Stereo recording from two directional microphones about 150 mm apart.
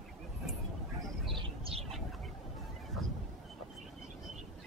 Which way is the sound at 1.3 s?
40° right (ahead or behind).